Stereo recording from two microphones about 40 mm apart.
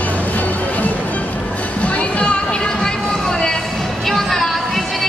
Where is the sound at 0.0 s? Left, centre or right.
Left.